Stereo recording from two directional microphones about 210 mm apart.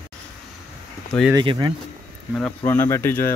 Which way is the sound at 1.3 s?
20° right (ahead or behind).